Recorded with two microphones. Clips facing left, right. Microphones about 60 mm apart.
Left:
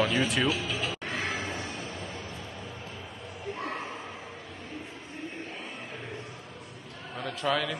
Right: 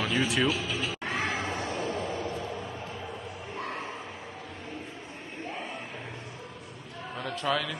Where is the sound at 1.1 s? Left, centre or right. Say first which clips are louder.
Right 4 dB; right.